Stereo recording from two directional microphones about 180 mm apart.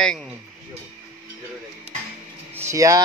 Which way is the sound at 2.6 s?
15° right (ahead or behind).